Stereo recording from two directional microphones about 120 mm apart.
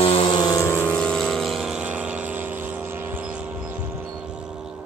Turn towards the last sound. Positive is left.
turn(degrees=-10)  # may be behind; listen again after turning